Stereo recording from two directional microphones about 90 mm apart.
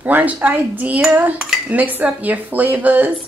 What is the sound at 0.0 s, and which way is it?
A woman's voice, 15° right (ahead or behind).